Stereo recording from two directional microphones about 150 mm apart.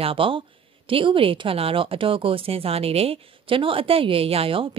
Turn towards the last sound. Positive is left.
turn(degrees=-35)  # may be behind; listen again after turning